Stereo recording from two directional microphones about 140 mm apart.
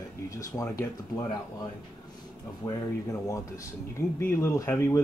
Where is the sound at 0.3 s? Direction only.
25° left (ahead or behind).